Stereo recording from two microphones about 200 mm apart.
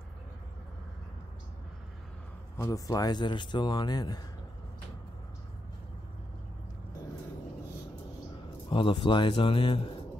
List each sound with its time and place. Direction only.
2.5 s speech: 15° left (ahead or behind)
8.6 s speech: 25° left (ahead or behind)